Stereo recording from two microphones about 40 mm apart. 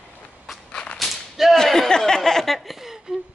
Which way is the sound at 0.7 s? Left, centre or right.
Left.